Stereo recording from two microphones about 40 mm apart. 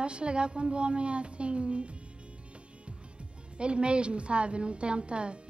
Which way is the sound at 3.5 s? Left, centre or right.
Right.